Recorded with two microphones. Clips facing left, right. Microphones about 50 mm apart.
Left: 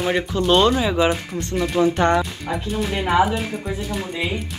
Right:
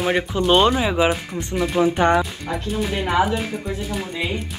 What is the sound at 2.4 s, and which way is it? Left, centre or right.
Speech, centre.